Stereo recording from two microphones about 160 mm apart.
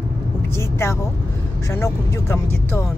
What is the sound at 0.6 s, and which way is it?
Speech, 15° left (ahead or behind).